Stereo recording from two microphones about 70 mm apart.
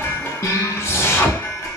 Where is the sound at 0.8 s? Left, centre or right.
Left.